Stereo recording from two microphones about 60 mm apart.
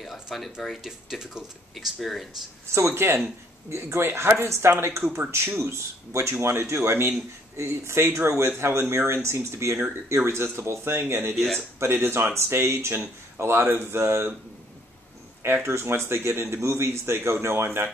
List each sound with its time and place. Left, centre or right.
0.0 s speech: centre
2.7 s a man's voice: right
15.4 s a man's voice: right